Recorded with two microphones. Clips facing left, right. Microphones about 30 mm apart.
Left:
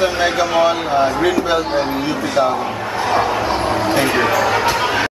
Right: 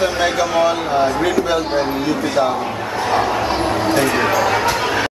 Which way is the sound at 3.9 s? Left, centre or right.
Centre.